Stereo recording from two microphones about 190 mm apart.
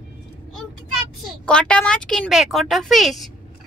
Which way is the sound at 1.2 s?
5° left (ahead or behind).